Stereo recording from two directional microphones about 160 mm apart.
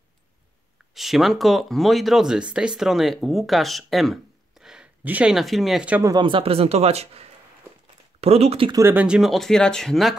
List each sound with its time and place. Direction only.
0.9 s speech: centre (ahead or behind)
6.0 s speech: 30° right (ahead or behind)
8.7 s speech: 10° right (ahead or behind)